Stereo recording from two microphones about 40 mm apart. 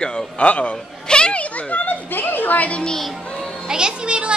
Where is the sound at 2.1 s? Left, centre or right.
Left.